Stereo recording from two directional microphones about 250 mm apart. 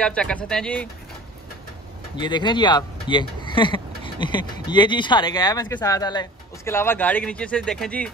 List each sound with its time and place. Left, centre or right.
0.0 s speech: centre
2.1 s speech: centre